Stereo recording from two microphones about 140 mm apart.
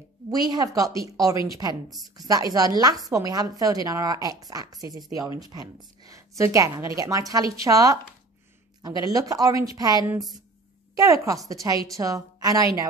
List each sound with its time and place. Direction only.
0.3 s a woman's voice: 25° right (ahead or behind)
1.9 s a woman's voice: centre (ahead or behind)
2.1 s a woman's voice: 25° right (ahead or behind)
9.0 s a woman's voice: 25° right (ahead or behind)